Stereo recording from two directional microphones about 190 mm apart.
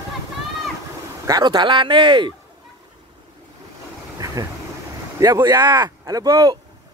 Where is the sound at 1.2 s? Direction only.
20° right (ahead or behind).